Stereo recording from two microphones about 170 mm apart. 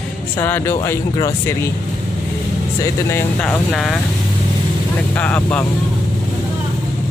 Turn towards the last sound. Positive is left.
turn(degrees=10)  # may be behind; listen again after turning